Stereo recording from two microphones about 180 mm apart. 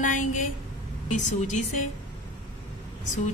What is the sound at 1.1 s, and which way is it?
Speech, 40° left (ahead or behind).